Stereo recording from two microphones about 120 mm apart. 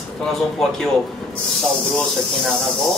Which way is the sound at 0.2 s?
5° left (ahead or behind).